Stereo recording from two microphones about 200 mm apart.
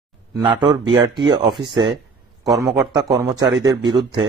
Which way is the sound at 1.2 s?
20° right (ahead or behind).